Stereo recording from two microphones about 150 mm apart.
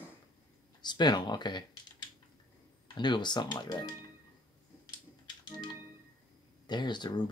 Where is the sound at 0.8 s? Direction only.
30° left (ahead or behind).